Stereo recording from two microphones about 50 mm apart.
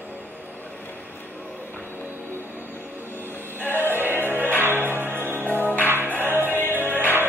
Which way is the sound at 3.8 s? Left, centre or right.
Right.